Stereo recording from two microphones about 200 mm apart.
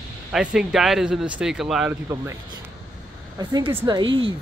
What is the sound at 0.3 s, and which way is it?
Speech, 5° right (ahead or behind).